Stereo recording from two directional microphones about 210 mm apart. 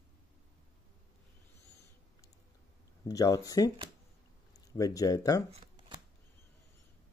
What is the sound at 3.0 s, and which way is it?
Speech, 15° left (ahead or behind).